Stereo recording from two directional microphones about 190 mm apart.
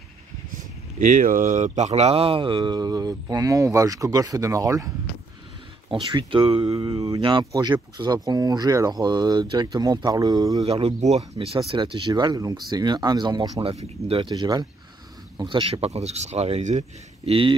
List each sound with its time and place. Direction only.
0.5 s speech: 45° right (ahead or behind); by 4.9 s 15° right (ahead or behind)
6.1 s speech: 25° right (ahead or behind)
10.6 s a man's voice: 30° right (ahead or behind)